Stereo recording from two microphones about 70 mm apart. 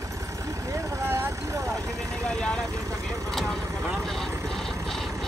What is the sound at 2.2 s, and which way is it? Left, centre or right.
Vehicle, centre.